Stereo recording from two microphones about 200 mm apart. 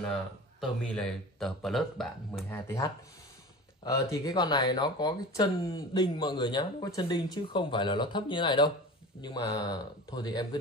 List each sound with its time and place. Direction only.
0.6 s speech: 5° left (ahead or behind)
3.8 s speech: 20° left (ahead or behind)